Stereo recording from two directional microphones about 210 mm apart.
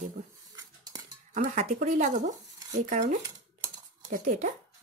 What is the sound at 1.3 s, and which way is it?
Speech, 35° right (ahead or behind).